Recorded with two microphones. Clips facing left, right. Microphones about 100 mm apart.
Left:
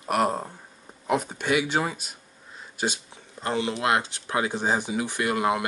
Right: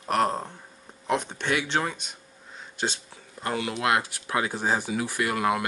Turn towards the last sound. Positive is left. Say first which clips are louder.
# left 1 dB
turn(degrees=20)  # may be behind; listen again after turning